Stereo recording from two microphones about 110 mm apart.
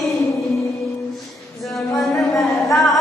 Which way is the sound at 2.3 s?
30° left (ahead or behind).